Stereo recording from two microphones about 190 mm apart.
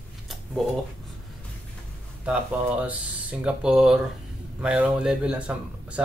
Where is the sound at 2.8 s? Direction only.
5° right (ahead or behind).